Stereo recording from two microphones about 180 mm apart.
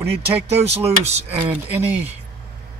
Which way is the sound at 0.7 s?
35° right (ahead or behind).